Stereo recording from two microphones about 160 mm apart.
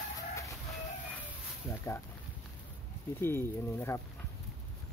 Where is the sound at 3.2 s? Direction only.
15° left (ahead or behind).